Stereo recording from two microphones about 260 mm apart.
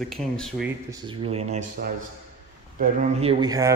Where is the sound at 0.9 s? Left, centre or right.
Centre.